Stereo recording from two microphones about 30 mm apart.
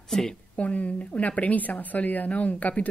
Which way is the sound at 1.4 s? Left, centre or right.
Left.